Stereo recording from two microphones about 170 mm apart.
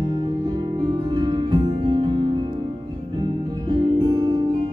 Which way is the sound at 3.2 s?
30° right (ahead or behind).